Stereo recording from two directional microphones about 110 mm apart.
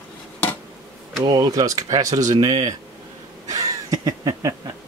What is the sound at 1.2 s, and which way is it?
Speech, 35° right (ahead or behind).